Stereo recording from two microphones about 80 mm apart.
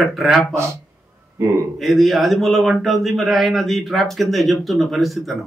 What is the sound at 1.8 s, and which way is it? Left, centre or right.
Speech, centre.